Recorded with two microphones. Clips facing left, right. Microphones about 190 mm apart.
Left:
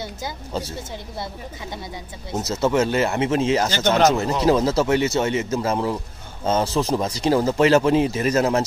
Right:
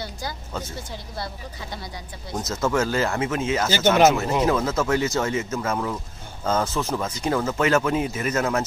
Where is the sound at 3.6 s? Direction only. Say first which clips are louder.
Right 1 dB; 10° right (ahead or behind).